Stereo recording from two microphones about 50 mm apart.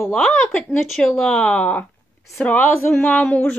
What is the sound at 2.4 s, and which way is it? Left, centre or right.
Speech, left.